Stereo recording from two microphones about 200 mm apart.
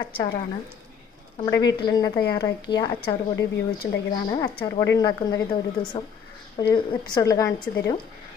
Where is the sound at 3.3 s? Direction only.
65° left (ahead or behind).